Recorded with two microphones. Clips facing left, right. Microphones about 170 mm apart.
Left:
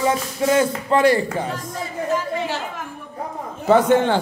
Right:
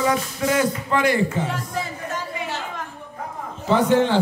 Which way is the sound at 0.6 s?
30° left (ahead or behind).